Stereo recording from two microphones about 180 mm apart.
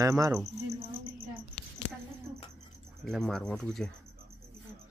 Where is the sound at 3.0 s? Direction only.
Centre (ahead or behind).